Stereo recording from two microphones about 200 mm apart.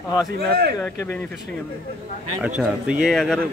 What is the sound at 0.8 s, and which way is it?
Speech, 10° left (ahead or behind).